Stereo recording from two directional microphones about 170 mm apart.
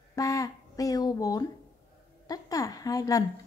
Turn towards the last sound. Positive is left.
turn(degrees=20)  # may be behind; listen again after turning